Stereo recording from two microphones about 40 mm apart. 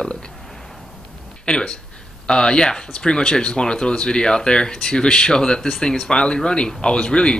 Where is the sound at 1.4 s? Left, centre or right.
Left.